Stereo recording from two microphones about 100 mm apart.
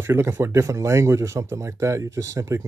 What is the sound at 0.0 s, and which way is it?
Speech, 25° right (ahead or behind).